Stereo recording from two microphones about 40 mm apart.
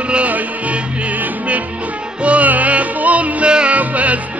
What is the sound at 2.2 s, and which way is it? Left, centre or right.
Music, right.